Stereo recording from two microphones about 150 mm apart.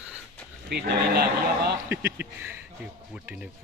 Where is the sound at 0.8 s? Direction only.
90° right.